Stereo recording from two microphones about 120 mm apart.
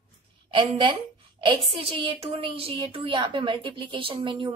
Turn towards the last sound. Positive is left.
turn(degrees=-45)  # may be behind; listen again after turning